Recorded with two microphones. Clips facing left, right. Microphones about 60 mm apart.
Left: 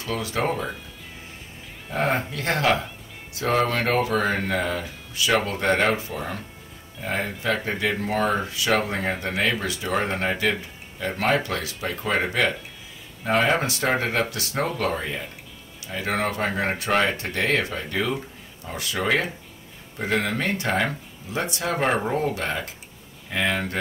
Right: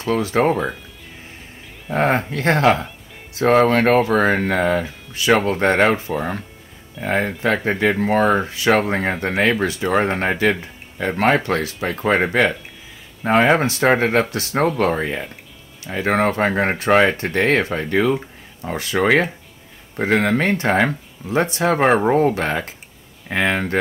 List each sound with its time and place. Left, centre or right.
0.0 s speech: right
2.0 s speech: right